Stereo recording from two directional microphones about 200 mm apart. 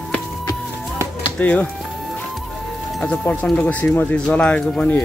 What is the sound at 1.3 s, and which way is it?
Speech, 10° left (ahead or behind).